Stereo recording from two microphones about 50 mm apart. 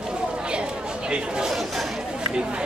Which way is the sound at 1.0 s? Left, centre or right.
Centre.